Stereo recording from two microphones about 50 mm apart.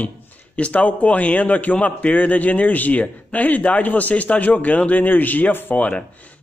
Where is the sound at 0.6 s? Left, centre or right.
Left.